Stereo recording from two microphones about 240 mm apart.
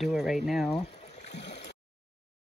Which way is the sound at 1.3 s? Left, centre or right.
Left.